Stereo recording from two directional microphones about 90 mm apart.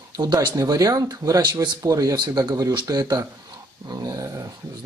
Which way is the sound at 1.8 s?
40° right (ahead or behind).